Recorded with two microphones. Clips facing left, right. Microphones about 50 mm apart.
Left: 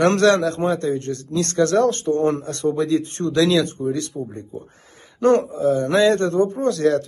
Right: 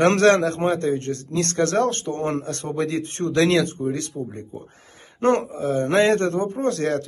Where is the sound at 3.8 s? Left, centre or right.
Right.